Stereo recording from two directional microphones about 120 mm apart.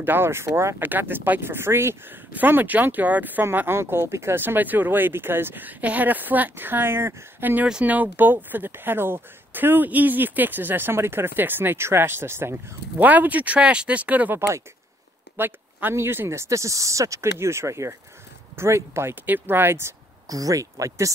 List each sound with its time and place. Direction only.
0.0 s speech: 20° right (ahead or behind)